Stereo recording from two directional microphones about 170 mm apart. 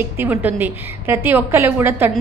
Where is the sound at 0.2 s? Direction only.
10° right (ahead or behind).